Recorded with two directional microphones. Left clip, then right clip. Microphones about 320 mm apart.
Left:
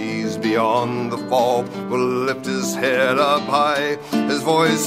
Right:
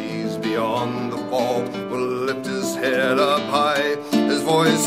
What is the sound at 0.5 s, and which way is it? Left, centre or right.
Music, left.